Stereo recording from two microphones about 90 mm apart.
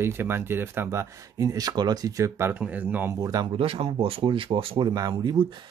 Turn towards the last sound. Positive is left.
turn(degrees=-55)  # may be behind; listen again after turning